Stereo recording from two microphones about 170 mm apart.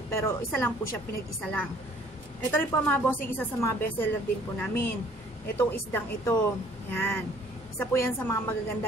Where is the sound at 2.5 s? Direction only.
10° left (ahead or behind).